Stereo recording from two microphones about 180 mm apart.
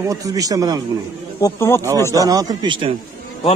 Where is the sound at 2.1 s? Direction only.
20° right (ahead or behind).